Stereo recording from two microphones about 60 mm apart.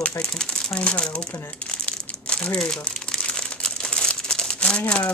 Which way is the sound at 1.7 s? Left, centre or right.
Centre.